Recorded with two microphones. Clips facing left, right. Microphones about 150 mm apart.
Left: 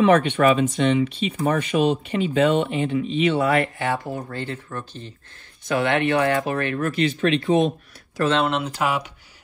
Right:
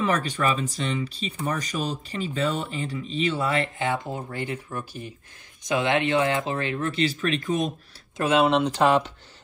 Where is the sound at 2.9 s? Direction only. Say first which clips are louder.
Left 7 dB; 35° right (ahead or behind).